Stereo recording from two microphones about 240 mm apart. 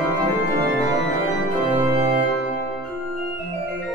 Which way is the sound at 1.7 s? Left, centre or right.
Right.